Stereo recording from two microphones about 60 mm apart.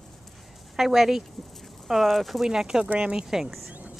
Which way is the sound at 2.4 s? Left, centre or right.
Centre.